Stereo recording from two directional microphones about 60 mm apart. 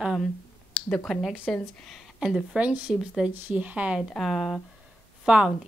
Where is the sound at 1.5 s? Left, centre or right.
Centre.